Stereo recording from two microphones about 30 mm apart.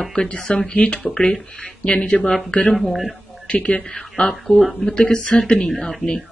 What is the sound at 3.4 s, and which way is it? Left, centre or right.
Speech, left.